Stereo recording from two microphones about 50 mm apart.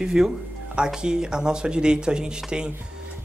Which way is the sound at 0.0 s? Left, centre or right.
Centre.